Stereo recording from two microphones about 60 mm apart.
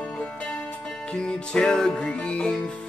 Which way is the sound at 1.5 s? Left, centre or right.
Centre.